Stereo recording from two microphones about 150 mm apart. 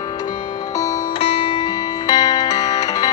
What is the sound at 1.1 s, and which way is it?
Music, 40° left (ahead or behind).